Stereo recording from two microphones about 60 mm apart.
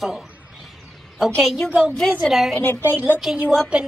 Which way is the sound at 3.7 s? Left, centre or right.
Centre.